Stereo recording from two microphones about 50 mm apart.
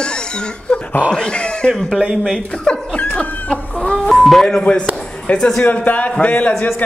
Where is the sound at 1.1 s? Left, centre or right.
Centre.